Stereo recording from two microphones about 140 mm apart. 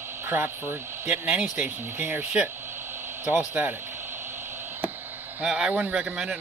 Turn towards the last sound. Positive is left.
turn(degrees=-5)  # may be behind; listen again after turning